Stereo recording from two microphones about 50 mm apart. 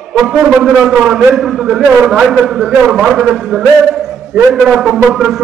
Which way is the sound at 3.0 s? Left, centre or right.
Centre.